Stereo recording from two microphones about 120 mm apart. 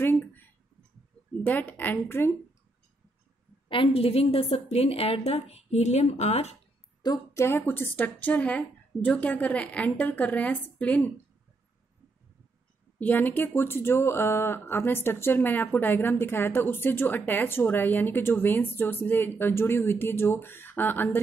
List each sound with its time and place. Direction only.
0.0 s a sound: 15° left (ahead or behind)
1.4 s a woman's voice: 15° left (ahead or behind)
3.6 s a woman's voice: 45° left (ahead or behind); by 6.5 s 60° left (ahead or behind)
7.3 s a woman's voice: 20° left (ahead or behind)
13.0 s a woman's voice: 15° left (ahead or behind)